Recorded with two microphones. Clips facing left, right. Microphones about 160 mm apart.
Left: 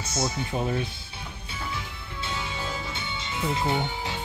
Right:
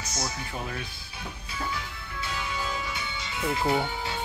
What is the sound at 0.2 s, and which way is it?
Speech, 25° left (ahead or behind).